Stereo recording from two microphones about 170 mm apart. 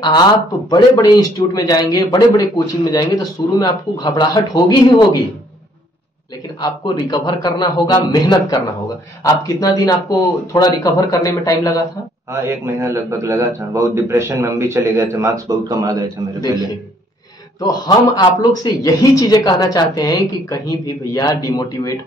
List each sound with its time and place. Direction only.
0.7 s a man's voice: 25° left (ahead or behind)
6.6 s a man's voice: 25° left (ahead or behind)
12.3 s a man's voice: 15° right (ahead or behind)
17.6 s a man's voice: 20° left (ahead or behind)